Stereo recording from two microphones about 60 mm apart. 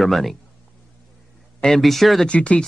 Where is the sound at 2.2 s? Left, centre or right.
Left.